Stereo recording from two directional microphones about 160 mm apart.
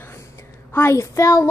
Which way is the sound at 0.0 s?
15° left (ahead or behind).